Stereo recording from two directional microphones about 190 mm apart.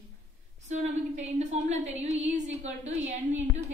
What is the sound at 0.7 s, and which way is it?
A woman's voice, 35° right (ahead or behind).